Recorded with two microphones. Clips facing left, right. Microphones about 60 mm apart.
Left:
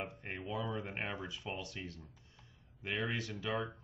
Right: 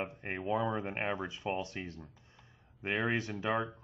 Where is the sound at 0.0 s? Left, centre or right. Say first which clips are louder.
Right 5 dB; right.